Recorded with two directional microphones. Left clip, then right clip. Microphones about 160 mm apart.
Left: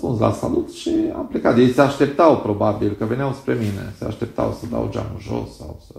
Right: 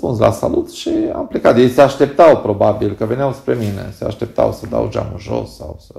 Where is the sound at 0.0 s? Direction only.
20° right (ahead or behind).